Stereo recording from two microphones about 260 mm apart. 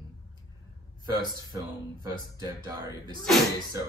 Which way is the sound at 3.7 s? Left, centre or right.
Centre.